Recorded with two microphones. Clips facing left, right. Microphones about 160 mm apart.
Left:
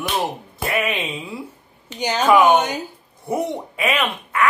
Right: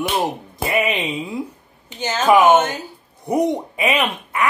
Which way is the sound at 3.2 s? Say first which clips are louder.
Right 5 dB; 15° right (ahead or behind).